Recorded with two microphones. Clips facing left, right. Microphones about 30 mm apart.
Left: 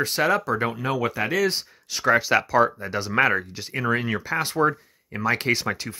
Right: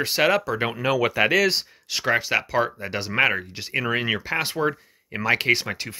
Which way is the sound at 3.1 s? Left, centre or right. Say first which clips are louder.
Even; right.